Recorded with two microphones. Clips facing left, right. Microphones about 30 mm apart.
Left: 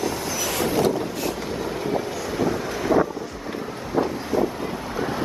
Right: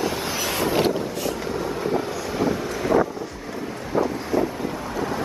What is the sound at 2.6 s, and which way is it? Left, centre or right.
Wind noise, centre.